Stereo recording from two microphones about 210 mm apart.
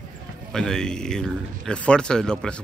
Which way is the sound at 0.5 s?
Centre (ahead or behind).